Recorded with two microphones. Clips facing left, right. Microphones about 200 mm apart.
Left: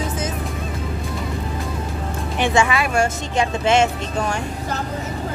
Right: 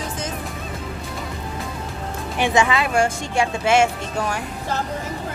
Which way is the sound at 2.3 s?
15° right (ahead or behind).